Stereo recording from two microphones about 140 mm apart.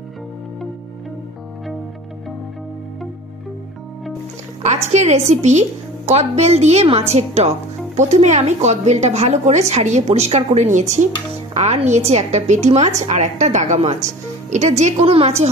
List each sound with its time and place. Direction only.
4.6 s a woman's voice: 55° right (ahead or behind)